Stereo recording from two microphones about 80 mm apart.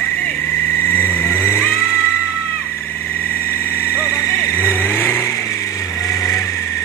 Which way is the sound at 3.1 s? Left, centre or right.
Left.